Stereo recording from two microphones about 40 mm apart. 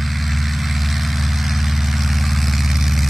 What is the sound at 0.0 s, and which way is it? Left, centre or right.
Vehicle, centre.